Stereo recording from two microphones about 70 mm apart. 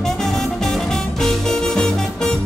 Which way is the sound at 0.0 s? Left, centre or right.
Centre.